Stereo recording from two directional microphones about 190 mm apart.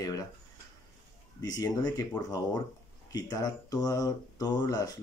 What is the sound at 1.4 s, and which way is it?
Speech, 20° left (ahead or behind).